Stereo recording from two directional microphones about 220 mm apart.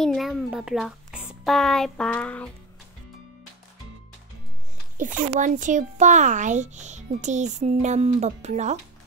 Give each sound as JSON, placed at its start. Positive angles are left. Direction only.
{"t": 0.0, "sound": "a child's voice", "side_deg": 0}
{"t": 4.9, "sound": "a child's voice", "side_deg": -35}